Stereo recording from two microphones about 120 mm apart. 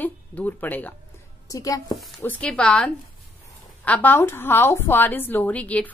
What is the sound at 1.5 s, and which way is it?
Speech, 30° left (ahead or behind).